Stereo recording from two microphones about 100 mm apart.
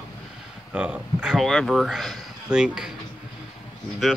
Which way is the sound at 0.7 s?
15° right (ahead or behind).